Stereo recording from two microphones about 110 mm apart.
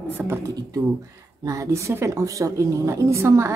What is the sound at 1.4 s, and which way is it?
A woman's voice, 30° right (ahead or behind).